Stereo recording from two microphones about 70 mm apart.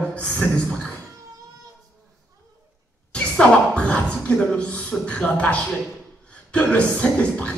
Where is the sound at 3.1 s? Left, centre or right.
Centre.